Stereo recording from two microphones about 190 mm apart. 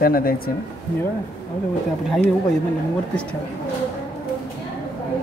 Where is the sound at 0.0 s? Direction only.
50° left (ahead or behind).